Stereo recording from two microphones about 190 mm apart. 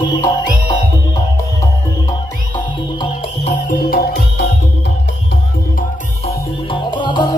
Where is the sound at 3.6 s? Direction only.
55° left (ahead or behind).